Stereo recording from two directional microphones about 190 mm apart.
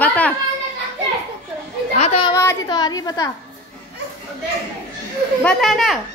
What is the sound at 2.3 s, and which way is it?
Speech, 20° left (ahead or behind).